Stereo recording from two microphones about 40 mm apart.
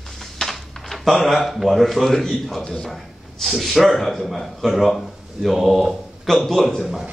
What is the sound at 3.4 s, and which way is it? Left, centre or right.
Speech, centre.